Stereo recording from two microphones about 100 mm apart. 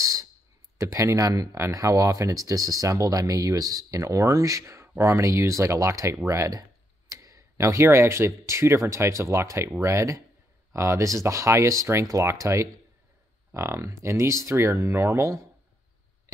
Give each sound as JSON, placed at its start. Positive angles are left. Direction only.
{"t": 0.0, "sound": "clicking", "side_deg": -35}
{"t": 0.7, "sound": "speech", "side_deg": -30}